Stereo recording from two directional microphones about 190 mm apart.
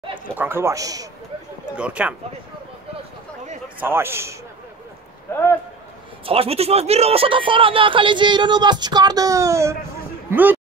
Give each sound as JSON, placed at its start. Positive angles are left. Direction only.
{"t": 0.3, "sound": "speech", "side_deg": -10}
{"t": 1.8, "sound": "speech", "side_deg": -5}
{"t": 3.8, "sound": "speech", "side_deg": -10}
{"t": 5.3, "sound": "a man's voice", "side_deg": 10}
{"t": 6.2, "sound": "speech", "side_deg": -30}